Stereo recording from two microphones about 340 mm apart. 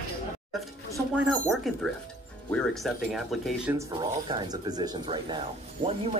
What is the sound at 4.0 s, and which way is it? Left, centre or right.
Speech, centre.